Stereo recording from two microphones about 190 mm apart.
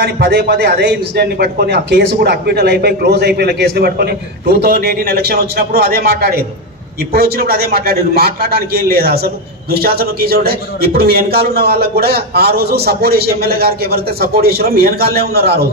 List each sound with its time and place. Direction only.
0.0 s a man's voice: 60° right (ahead or behind)